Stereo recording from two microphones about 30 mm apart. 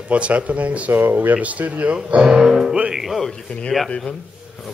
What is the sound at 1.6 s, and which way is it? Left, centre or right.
Speech, right.